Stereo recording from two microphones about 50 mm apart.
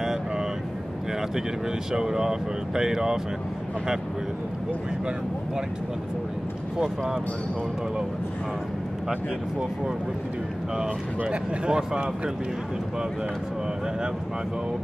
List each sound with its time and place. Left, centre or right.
1.9 s speech: centre
11.2 s speech: centre